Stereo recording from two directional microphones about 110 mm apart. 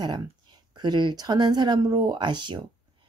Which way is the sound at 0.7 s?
45° right (ahead or behind).